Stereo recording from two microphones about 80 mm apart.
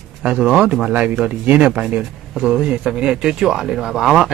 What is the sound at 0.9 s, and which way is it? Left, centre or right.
Speech, centre.